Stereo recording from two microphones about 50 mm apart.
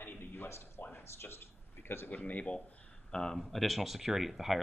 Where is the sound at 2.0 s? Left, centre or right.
Left.